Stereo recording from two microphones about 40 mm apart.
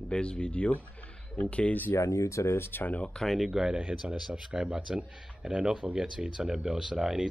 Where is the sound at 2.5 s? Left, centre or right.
Left.